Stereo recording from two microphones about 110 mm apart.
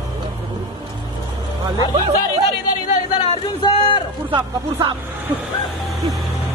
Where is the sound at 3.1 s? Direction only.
55° left (ahead or behind).